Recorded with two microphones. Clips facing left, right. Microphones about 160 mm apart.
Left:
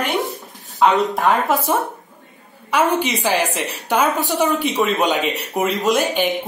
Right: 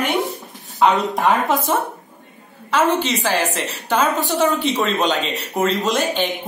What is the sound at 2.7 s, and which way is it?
A woman's voice, 10° left (ahead or behind).